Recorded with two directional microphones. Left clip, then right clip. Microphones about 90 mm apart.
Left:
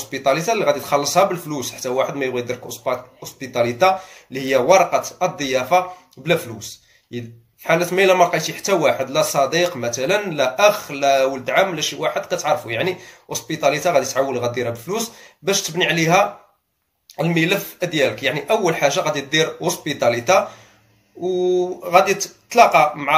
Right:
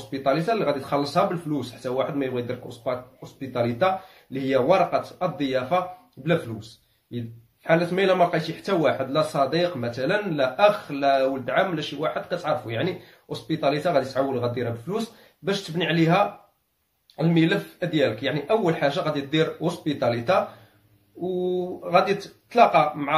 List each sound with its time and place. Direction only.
0.1 s speech: 15° right (ahead or behind)